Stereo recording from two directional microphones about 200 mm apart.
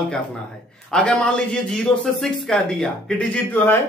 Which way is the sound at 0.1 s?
5° left (ahead or behind).